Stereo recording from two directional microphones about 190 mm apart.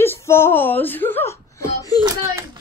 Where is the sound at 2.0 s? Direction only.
15° right (ahead or behind).